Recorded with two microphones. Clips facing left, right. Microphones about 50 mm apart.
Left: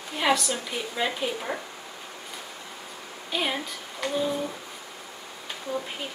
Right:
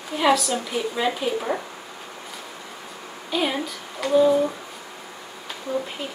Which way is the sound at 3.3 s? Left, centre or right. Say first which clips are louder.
Right 4 dB; centre.